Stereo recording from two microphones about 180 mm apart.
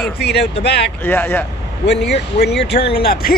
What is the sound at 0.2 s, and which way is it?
Speech, 65° left (ahead or behind).